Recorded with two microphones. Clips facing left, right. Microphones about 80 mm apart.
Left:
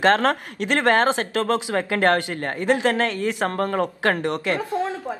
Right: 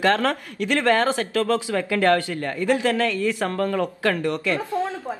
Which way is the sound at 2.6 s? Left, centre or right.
Left.